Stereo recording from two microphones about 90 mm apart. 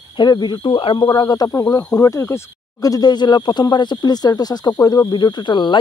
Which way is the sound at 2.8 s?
45° left (ahead or behind).